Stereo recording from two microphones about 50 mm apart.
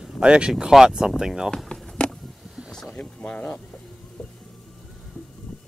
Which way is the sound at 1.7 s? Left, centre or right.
Left.